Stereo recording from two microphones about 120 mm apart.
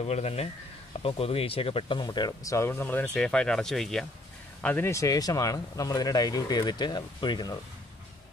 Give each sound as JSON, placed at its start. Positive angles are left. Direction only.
{"t": 0.0, "sound": "speech", "side_deg": 60}
{"t": 4.6, "sound": "speech", "side_deg": 20}